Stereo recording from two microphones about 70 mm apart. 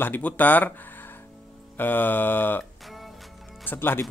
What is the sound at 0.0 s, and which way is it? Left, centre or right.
Speech, left.